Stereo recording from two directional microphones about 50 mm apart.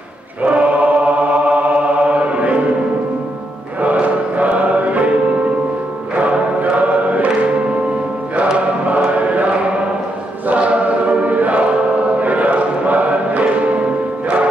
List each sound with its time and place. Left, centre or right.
0.4 s choir: right
3.8 s music: right
6.1 s music: right
8.5 s choir: right